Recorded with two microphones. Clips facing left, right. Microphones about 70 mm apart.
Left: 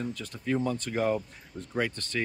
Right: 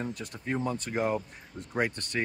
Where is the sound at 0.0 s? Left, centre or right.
Right.